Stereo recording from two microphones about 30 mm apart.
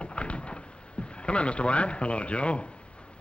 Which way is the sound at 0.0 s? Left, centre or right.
Left.